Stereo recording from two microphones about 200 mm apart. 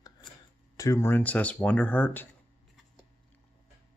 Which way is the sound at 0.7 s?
15° left (ahead or behind).